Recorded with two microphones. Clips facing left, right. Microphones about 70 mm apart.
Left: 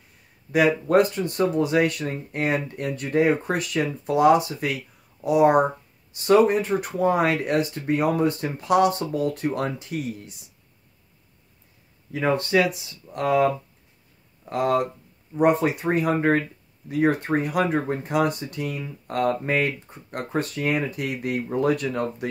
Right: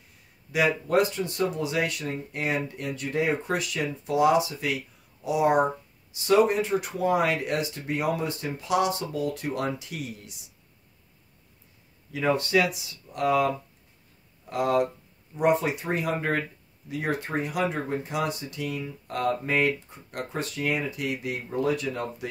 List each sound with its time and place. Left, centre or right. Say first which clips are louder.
0.5 s speech: left 5 dB; left
6.4 s speech: left 3 dB; left
12.1 s speech: left 2 dB; left
14.5 s speech: left 2 dB; left